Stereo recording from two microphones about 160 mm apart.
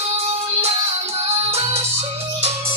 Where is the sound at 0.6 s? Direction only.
40° right (ahead or behind).